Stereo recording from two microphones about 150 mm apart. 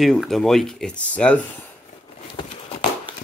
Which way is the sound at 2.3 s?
35° left (ahead or behind).